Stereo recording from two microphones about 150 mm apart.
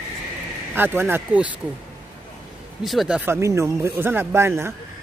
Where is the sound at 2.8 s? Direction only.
Centre (ahead or behind).